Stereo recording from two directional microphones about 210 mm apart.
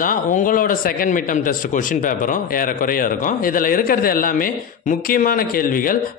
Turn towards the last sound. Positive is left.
turn(degrees=40)  # may be behind; listen again after turning